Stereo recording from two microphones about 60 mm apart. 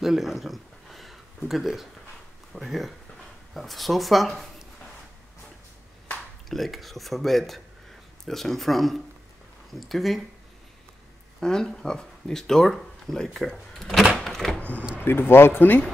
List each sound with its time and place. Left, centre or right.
0.0 s speech: centre
6.5 s speech: centre
11.4 s speech: centre
14.1 s a sound: centre
14.6 s power windows: left
15.0 s speech: left